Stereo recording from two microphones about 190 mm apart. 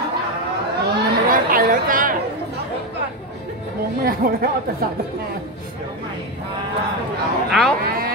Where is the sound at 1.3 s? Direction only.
45° right (ahead or behind).